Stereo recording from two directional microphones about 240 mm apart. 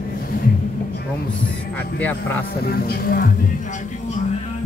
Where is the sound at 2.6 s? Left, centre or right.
Left.